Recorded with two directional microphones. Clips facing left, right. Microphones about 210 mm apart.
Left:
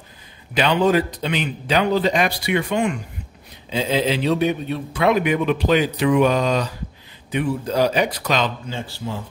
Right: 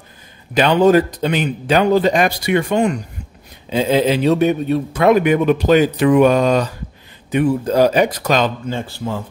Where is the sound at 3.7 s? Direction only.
50° right (ahead or behind).